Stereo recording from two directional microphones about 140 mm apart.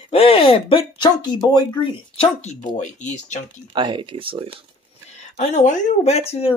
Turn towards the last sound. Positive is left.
turn(degrees=45)  # may be behind; listen again after turning